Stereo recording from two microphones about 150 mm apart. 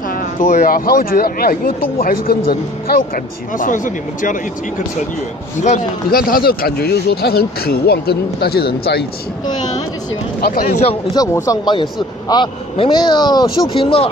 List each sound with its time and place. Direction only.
0.4 s speech: 65° left (ahead or behind)
3.5 s speech: 60° left (ahead or behind)
6.0 s speech: 75° left (ahead or behind)
10.4 s speech: 80° left
11.1 s a man's voice: 25° left (ahead or behind)